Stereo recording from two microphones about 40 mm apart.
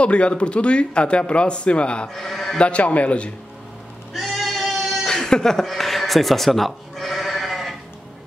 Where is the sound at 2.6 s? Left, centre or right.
Left.